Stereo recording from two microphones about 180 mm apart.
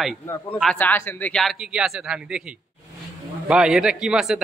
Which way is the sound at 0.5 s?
5° left (ahead or behind).